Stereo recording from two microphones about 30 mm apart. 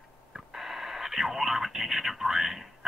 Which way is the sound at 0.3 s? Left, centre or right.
Centre.